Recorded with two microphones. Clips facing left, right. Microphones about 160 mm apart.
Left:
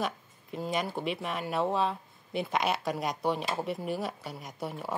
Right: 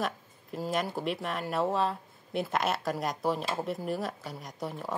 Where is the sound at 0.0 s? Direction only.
Centre (ahead or behind).